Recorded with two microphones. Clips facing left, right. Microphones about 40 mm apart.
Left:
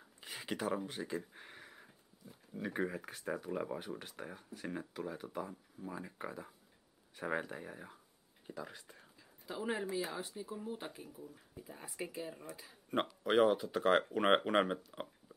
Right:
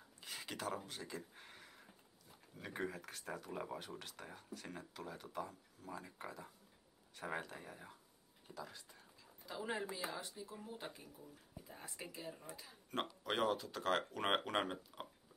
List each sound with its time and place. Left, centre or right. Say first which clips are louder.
0.2 s speech: left 6 dB; centre
8.5 s speech: left 5 dB; left
9.5 s speech: left 5 dB; centre
10.3 s speech: left 7 dB; left